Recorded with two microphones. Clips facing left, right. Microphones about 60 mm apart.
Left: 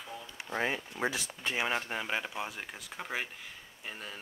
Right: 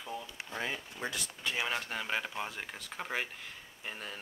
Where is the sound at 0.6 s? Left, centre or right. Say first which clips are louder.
Left 5 dB; left.